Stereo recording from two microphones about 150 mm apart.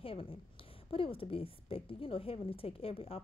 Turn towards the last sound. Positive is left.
turn(degrees=40)  # may be behind; listen again after turning